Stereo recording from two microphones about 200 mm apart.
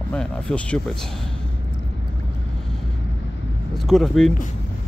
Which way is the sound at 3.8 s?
Centre (ahead or behind).